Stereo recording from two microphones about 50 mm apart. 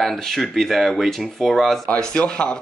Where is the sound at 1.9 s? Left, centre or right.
Centre.